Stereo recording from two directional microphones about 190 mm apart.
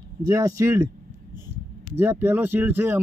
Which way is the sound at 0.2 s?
15° right (ahead or behind).